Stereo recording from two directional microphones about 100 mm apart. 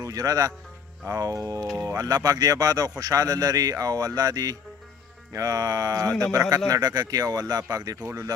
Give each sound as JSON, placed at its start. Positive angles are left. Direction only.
{"t": 0.0, "sound": "a man's voice", "side_deg": -35}